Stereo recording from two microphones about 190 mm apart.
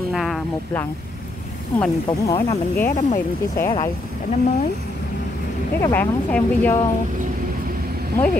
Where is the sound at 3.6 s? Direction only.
20° left (ahead or behind).